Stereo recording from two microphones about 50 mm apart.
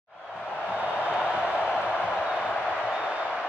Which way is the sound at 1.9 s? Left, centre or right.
Centre.